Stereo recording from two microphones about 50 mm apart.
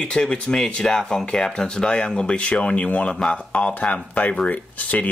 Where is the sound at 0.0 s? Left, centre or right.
Centre.